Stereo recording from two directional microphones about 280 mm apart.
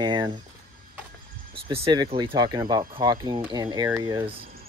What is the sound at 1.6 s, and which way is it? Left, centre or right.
Speech, centre.